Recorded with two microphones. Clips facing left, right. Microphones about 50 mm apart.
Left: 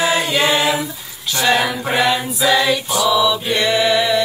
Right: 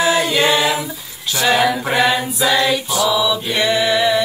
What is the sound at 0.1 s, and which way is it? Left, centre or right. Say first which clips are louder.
Mantra: right 1 dB; centre.